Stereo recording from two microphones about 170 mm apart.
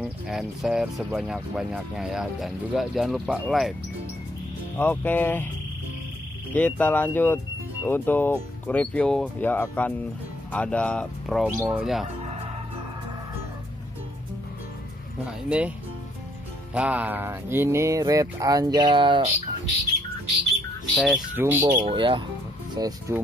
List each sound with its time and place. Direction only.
0.0 s speech: centre (ahead or behind)
4.7 s speech: 10° left (ahead or behind)
6.5 s speech: 10° left (ahead or behind)
15.2 s speech: 5° right (ahead or behind)
16.7 s speech: 10° right (ahead or behind); by 19.2 s 30° right (ahead or behind)
20.9 s speech: centre (ahead or behind)
21.4 s speech: 10° right (ahead or behind)
21.6 s speech: 30° right (ahead or behind)